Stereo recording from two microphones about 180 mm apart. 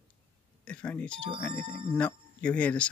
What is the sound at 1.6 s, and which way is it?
Speech, 30° right (ahead or behind).